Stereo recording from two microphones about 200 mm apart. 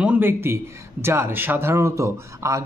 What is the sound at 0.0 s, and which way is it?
Speech, 10° right (ahead or behind).